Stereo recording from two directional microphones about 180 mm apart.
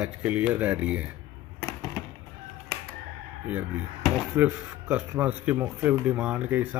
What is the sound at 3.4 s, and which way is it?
Speech, 5° right (ahead or behind).